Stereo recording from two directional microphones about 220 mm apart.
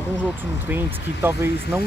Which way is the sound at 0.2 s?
10° right (ahead or behind).